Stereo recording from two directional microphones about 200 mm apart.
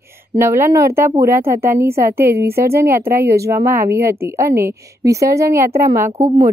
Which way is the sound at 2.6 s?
15° right (ahead or behind).